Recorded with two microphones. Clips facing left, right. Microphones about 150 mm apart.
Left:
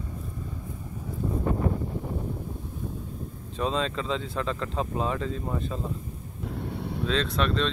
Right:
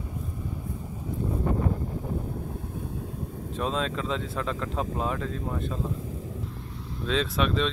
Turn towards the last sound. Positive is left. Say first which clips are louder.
# even
turn(degrees=0)  # may be behind; listen again after turning